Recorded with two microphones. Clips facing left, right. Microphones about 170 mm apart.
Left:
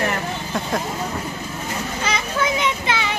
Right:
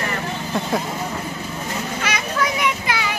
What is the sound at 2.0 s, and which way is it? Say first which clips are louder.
Children playing: left 1 dB; 25° left (ahead or behind).